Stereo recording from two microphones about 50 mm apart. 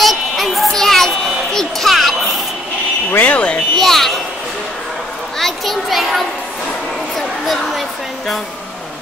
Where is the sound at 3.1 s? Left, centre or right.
Left.